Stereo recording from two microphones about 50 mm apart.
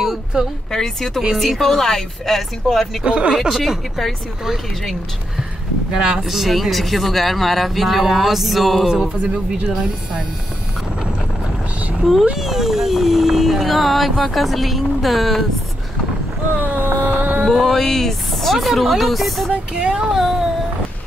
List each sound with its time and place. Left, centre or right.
0.3 s speech: centre
0.7 s speech: centre
1.3 s speech: centre
3.0 s speech: right
3.3 s speech: centre
6.1 s speech: centre
8.8 s speech: centre
12.4 s speech: centre
16.5 s vehicle: right
17.0 s a sound: right
17.5 s speech: centre
19.7 s speech: centre
20.1 s speech: centre